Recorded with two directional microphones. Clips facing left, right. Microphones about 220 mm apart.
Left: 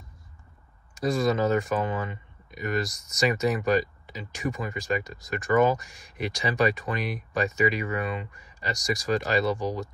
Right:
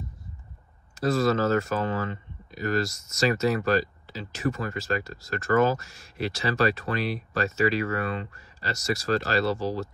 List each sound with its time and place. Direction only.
0.9 s speech: 15° left (ahead or behind)